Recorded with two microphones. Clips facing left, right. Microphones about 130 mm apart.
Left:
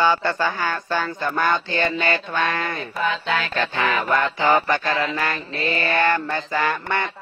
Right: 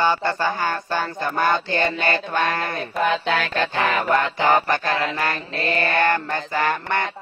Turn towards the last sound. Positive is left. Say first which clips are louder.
# right 1 dB
turn(degrees=-50)  # may be behind; listen again after turning